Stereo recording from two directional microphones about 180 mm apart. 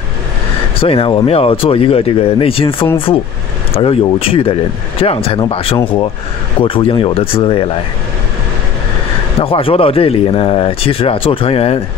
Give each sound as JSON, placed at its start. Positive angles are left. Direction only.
{"t": 0.7, "sound": "speech", "side_deg": 30}
{"t": 9.4, "sound": "speech", "side_deg": 30}